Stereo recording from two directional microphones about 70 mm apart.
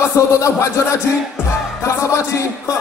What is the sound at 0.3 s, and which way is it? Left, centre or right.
Music, left.